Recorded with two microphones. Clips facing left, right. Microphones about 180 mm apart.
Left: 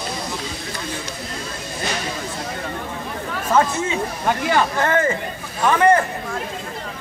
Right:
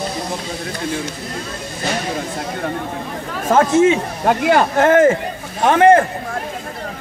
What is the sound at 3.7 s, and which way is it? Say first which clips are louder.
Speech: right 10 dB; 80° right.